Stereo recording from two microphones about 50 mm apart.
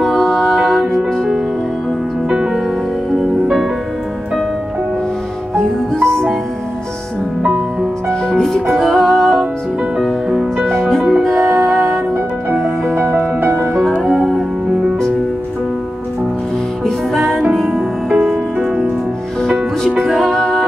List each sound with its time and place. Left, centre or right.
0.0 s music: centre
0.3 s music: centre
0.6 s music: centre
2.2 s music: centre
5.6 s music: centre
8.1 s music: centre
10.3 s music: centre
10.7 s music: centre
13.0 s music: right
14.1 s music: centre
16.8 s music: centre
17.6 s music: centre
19.4 s music: centre